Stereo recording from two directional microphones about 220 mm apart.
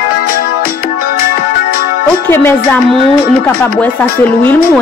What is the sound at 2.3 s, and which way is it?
Speech, 10° left (ahead or behind).